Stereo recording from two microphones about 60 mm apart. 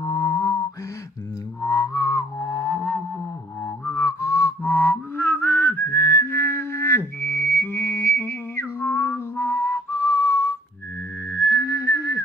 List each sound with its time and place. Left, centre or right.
0.0 s music: left
1.7 s music: left
2.4 s music: left
3.6 s music: left
11.3 s a sound: left
11.6 s whistling: left